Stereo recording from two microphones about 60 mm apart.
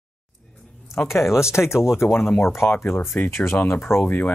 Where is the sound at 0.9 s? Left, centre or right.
Left.